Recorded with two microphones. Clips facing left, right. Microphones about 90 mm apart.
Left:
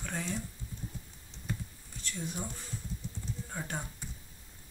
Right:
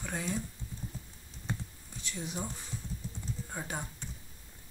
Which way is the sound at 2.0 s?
20° right (ahead or behind).